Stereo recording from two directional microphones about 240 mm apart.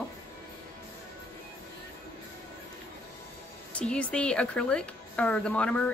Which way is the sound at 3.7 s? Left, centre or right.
Centre.